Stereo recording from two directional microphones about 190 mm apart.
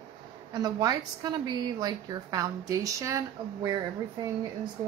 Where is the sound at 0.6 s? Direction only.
20° right (ahead or behind).